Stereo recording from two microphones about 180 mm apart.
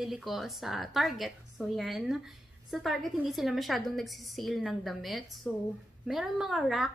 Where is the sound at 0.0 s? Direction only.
Centre (ahead or behind).